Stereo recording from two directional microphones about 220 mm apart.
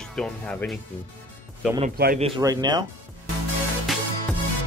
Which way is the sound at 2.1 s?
25° right (ahead or behind).